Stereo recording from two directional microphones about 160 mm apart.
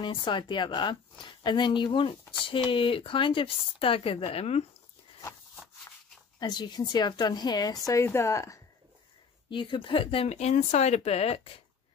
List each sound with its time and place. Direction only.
0.0 s speech: 30° left (ahead or behind)
6.4 s speech: 25° left (ahead or behind)
9.5 s speech: 30° left (ahead or behind)